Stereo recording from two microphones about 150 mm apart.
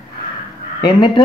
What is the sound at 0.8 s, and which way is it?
Speech, 30° left (ahead or behind).